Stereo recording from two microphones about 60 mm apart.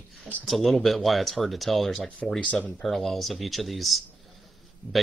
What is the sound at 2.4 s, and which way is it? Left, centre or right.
Speech, left.